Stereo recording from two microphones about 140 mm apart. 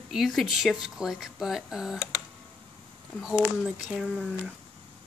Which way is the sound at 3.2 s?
5° right (ahead or behind).